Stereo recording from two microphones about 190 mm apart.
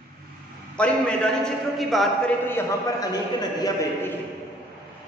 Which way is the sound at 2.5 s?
15° left (ahead or behind).